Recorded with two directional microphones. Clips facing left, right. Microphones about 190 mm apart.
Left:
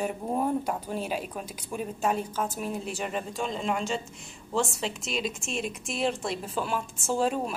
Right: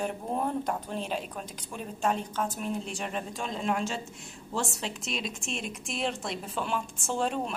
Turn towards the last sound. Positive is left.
turn(degrees=5)  # may be behind; listen again after turning